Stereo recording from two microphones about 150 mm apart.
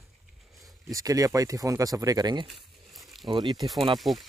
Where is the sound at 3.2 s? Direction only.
30° right (ahead or behind).